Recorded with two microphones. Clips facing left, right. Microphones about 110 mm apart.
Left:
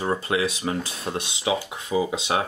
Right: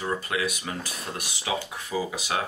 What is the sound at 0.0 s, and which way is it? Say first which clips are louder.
Speech: left 4 dB; 25° left (ahead or behind).